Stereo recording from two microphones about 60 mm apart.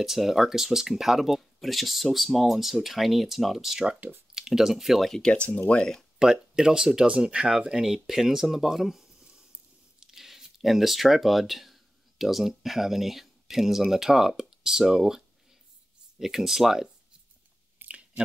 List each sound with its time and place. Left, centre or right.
0.0 s speech: centre
5.3 s speech: left
6.1 s speech: centre
9.2 s a sound: centre
9.9 s speech: centre
17.7 s chewing: right